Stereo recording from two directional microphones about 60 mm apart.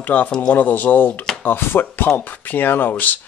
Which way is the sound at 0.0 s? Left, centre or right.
Left.